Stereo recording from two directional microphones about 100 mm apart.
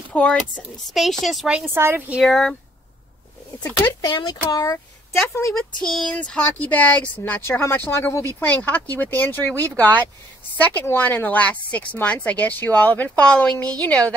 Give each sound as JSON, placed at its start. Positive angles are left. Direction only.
{"t": 0.1, "sound": "speech", "side_deg": 15}
{"t": 0.8, "sound": "speech", "side_deg": 0}
{"t": 1.7, "sound": "a woman's voice", "side_deg": -25}
{"t": 2.2, "sound": "speech", "side_deg": 5}
{"t": 4.1, "sound": "speech", "side_deg": 45}
{"t": 5.5, "sound": "speech", "side_deg": 5}
{"t": 8.5, "sound": "speech", "side_deg": 15}